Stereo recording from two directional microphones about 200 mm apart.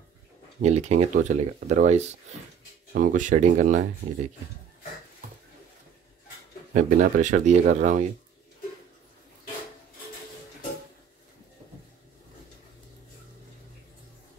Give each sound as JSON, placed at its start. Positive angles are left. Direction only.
{"t": 0.6, "sound": "speech", "side_deg": -35}
{"t": 6.7, "sound": "speech", "side_deg": -40}